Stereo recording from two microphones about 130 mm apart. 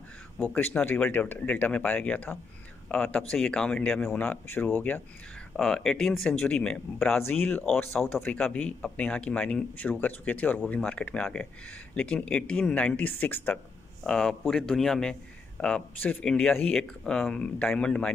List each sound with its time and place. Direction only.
0.4 s a man's voice: 10° left (ahead or behind)
5.6 s speech: 5° left (ahead or behind)
7.2 s a man's voice: 15° left (ahead or behind)